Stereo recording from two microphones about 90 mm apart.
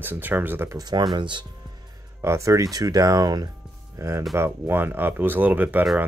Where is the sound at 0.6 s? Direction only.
45° right (ahead or behind); by 1.5 s 60° right (ahead or behind).